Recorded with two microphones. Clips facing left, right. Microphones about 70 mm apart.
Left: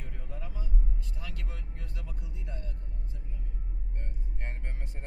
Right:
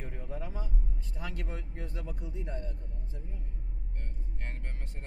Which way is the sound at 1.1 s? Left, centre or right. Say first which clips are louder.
Right 8 dB; right.